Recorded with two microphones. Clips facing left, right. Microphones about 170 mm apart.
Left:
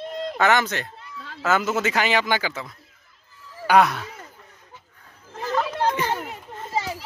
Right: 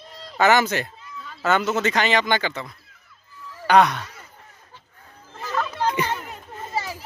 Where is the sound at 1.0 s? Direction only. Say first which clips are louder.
Even; 80° left.